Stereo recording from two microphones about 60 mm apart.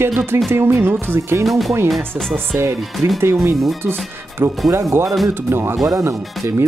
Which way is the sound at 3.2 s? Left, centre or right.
Right.